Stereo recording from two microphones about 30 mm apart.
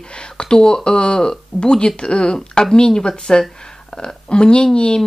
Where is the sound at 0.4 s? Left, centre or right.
Left.